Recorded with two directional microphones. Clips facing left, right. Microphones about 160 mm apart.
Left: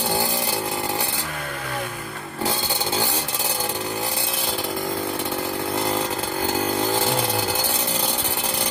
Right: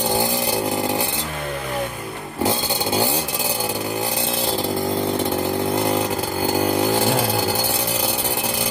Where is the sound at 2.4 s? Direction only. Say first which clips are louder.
Right 4 dB; 15° right (ahead or behind).